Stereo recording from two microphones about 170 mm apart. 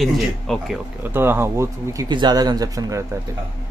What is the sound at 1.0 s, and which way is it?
Speech, 10° right (ahead or behind).